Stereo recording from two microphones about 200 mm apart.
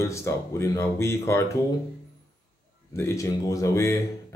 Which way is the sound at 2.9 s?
15° left (ahead or behind).